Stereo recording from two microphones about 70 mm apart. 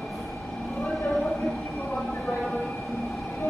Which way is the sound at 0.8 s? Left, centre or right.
Centre.